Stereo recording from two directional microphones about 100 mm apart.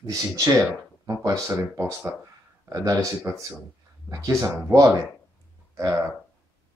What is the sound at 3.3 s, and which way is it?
Speech, 30° right (ahead or behind).